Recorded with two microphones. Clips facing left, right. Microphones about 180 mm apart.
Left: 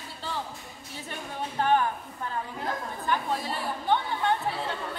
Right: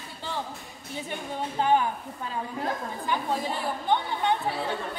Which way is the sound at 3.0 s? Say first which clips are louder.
Right 1 dB; 15° right (ahead or behind).